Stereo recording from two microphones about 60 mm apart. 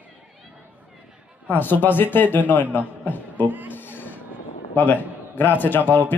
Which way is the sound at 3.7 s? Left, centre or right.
Left.